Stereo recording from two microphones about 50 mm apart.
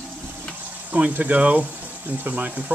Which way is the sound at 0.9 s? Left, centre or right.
Right.